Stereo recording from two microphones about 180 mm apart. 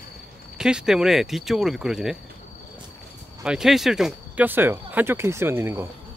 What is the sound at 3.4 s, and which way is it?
Speech, 5° right (ahead or behind).